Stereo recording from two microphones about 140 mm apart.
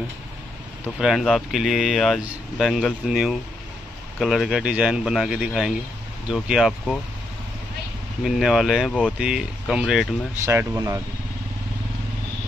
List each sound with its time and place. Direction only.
0.8 s speech: 5° right (ahead or behind)
8.2 s speech: 5° right (ahead or behind)
10.4 s speech: 20° right (ahead or behind)